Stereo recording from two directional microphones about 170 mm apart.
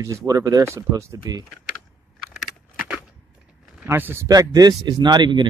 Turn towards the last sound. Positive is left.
turn(degrees=-25)  # may be behind; listen again after turning